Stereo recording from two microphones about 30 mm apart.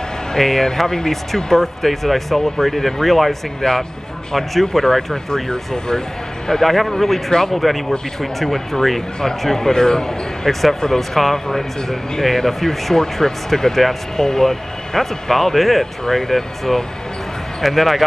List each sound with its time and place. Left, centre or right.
0.3 s speech: centre
1.3 s speech: centre
3.6 s speech: centre
4.4 s speech: centre
5.1 s speech: left
6.6 s speech: centre
7.2 s speech: centre
7.5 s speech: centre
10.5 s speech: centre
12.9 s speech: centre